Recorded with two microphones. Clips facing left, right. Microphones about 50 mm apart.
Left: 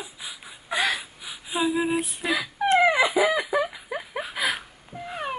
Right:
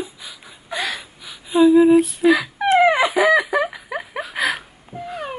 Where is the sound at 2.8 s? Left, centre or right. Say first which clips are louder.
Right 5 dB; right.